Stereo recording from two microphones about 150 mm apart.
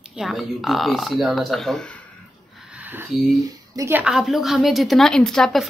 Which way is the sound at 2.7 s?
10° right (ahead or behind).